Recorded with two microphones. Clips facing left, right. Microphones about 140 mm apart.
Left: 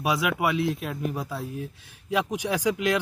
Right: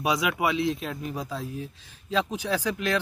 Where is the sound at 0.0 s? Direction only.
Centre (ahead or behind).